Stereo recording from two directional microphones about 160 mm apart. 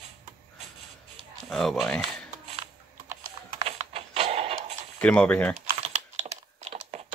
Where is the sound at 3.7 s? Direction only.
40° right (ahead or behind).